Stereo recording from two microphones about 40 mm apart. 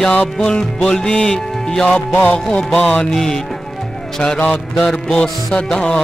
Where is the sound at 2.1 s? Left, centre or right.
Left.